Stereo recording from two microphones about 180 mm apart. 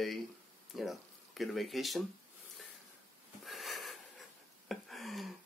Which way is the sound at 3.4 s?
Centre (ahead or behind).